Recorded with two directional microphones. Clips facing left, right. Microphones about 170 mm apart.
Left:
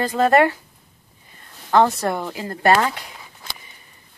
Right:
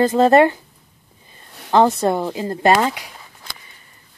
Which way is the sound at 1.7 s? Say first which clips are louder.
Right 2 dB; 25° right (ahead or behind).